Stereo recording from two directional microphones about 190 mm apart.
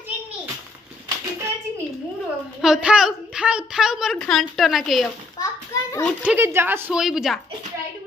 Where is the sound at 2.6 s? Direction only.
5° right (ahead or behind).